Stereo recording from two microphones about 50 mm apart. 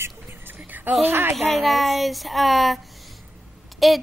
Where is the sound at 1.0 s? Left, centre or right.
Right.